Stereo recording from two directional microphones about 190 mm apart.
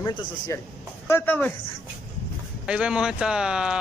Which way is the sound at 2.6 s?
5° right (ahead or behind).